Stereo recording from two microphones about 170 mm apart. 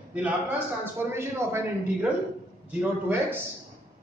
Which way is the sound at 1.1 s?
15° right (ahead or behind).